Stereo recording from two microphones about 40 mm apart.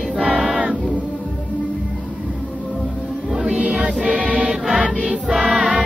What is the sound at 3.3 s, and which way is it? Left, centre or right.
Music, centre.